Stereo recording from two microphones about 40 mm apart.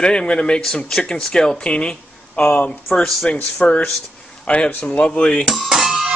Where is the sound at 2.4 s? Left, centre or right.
Left.